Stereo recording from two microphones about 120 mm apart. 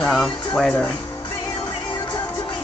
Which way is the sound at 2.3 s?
40° left (ahead or behind).